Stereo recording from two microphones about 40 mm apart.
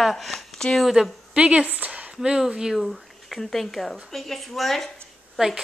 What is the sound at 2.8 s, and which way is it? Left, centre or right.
Speech, centre.